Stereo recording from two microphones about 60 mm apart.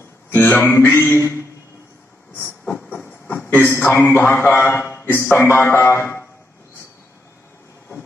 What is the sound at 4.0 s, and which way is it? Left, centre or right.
A man's voice, left.